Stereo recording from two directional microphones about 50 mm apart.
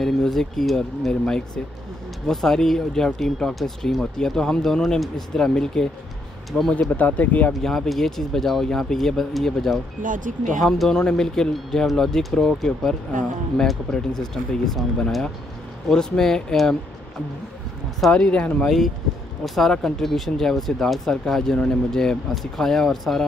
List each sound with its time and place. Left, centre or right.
0.0 s speech: centre
2.2 s speech: centre
6.7 s speech: left
7.6 s speech: centre
18.1 s speech: left
19.4 s speech: centre